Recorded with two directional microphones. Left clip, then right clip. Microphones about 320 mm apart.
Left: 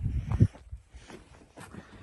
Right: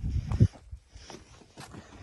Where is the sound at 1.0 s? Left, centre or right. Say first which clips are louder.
Right 2 dB; centre.